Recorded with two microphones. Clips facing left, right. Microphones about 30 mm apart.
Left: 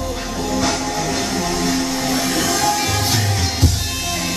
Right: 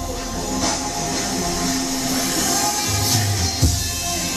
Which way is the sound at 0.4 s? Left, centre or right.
Left.